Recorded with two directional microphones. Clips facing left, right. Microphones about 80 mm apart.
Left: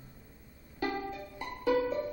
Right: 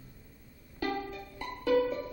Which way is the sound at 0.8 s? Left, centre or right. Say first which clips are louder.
Even; left.